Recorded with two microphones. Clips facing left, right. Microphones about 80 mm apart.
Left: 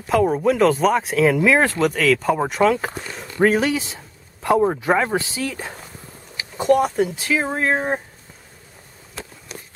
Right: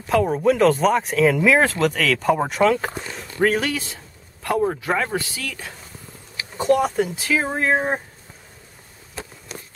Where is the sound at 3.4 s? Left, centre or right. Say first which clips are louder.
Left 3 dB; centre.